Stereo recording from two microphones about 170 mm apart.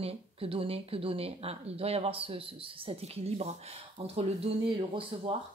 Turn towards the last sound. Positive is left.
turn(degrees=-30)  # may be behind; listen again after turning